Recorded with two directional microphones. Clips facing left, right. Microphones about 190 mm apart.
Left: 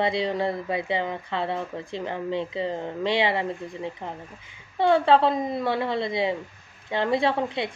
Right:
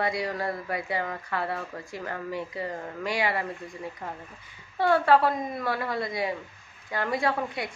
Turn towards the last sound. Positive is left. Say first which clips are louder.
# left 4 dB
turn(degrees=25)  # may be behind; listen again after turning